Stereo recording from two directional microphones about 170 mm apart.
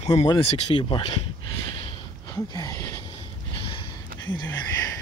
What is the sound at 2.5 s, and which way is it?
Speech, 20° left (ahead or behind).